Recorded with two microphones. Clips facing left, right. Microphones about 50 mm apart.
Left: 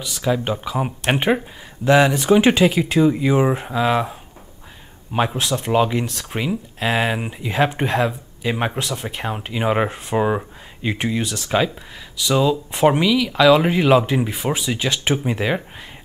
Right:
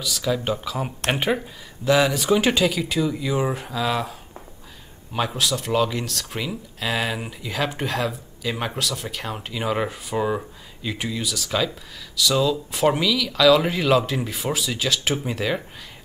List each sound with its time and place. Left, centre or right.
0.0 s speech: left